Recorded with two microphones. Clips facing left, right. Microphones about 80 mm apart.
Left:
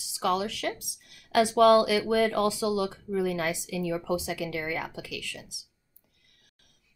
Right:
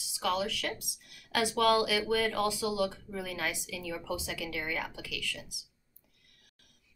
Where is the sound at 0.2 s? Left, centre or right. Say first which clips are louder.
Left 4 dB; left.